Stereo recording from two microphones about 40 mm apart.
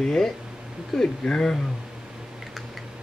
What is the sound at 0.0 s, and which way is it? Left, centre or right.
Speech, centre.